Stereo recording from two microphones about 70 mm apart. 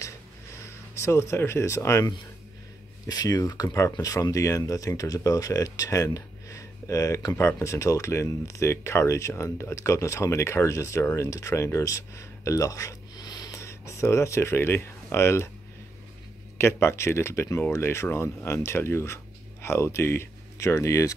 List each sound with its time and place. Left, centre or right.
0.7 s speech: left
3.1 s speech: left
6.1 s a sound: left
7.3 s speech: left
13.6 s speech: left
16.5 s speech: left